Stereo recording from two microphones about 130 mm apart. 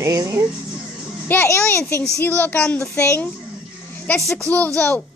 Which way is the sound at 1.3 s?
20° left (ahead or behind).